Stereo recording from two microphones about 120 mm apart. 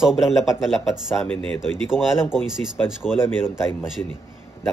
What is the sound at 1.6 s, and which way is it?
Speech, 5° right (ahead or behind).